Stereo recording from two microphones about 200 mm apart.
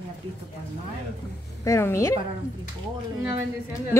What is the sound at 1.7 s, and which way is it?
Speech, 15° left (ahead or behind).